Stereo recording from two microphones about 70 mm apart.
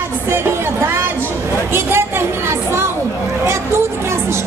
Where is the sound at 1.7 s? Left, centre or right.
Right.